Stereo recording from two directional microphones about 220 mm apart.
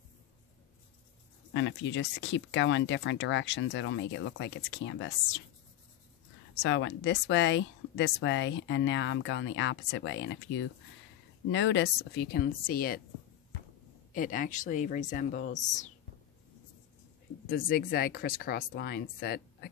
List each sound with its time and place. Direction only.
1.5 s a woman's voice: 55° left (ahead or behind)
6.6 s a woman's voice: 55° left (ahead or behind)
14.1 s speech: 35° left (ahead or behind)
17.6 s speech: 40° left (ahead or behind)